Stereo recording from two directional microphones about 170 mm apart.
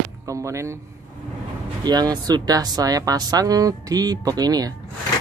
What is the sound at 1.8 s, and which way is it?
Speech, 25° right (ahead or behind).